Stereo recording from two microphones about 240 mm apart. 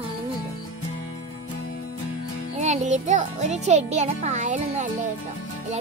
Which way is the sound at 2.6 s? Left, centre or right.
Right.